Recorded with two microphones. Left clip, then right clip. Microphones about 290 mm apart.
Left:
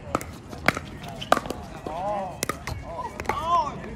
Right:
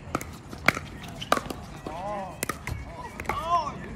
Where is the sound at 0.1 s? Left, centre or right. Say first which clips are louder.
Left 4 dB; left.